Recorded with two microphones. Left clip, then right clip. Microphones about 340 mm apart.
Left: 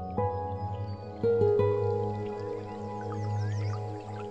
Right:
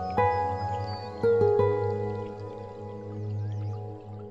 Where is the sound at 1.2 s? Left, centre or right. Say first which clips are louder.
Right 2 dB; centre.